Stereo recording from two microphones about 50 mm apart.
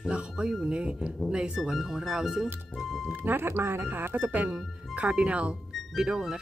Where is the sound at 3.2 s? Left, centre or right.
Right.